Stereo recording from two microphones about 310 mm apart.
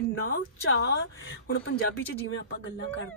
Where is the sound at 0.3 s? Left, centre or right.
Left.